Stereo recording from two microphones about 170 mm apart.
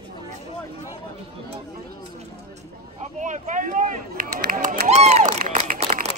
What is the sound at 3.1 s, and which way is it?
Run, 45° right (ahead or behind).